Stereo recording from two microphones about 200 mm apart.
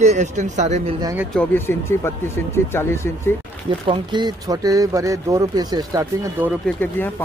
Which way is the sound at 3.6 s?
25° right (ahead or behind).